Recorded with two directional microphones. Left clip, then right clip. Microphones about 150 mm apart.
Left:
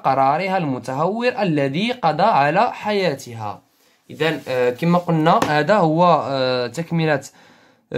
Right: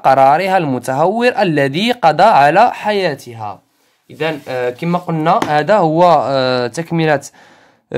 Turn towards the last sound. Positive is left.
turn(degrees=-30)  # may be behind; listen again after turning